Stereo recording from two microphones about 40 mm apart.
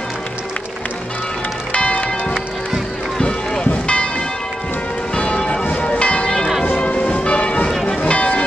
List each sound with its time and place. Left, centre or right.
1.7 s music: left
3.2 s music: left
5.1 s church bell: left
5.6 s church bell: left
6.8 s change ringing: left
8.0 s a sound: left